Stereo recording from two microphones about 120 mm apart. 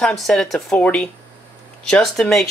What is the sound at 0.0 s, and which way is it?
Speech, 5° left (ahead or behind).